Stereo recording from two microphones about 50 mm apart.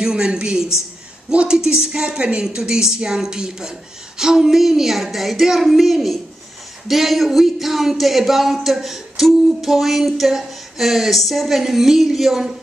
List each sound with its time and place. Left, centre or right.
0.0 s a woman's voice: centre